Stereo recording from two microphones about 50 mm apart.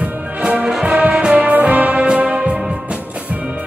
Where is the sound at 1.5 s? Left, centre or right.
Right.